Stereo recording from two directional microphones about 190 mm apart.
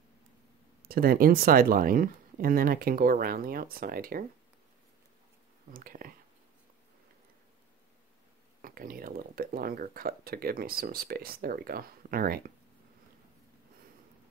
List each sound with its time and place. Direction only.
0.8 s speech: 50° right (ahead or behind)
5.7 s speech: 50° right (ahead or behind)
8.6 s speech: 50° right (ahead or behind)